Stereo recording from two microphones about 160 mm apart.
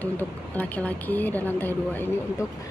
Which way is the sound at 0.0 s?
10° left (ahead or behind).